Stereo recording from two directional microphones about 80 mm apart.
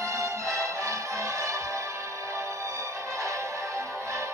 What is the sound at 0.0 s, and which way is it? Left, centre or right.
Music, right.